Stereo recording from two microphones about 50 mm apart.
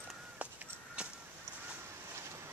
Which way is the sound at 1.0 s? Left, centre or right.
Right.